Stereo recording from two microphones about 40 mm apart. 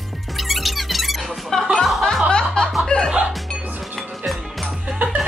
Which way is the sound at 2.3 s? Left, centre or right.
Left.